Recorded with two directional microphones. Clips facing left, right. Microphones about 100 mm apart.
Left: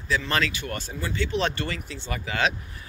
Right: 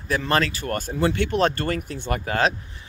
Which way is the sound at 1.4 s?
45° right (ahead or behind).